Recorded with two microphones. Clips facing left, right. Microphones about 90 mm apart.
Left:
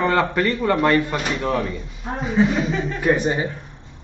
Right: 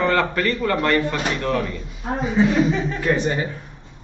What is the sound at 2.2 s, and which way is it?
Speech, centre (ahead or behind).